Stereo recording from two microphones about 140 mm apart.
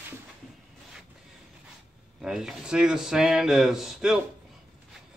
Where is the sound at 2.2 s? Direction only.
5° right (ahead or behind).